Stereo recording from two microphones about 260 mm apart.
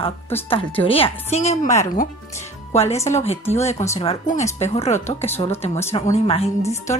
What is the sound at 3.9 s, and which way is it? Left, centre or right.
A woman's voice, left.